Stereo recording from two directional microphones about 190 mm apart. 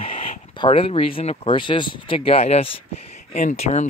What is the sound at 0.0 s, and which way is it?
Speech, 30° left (ahead or behind).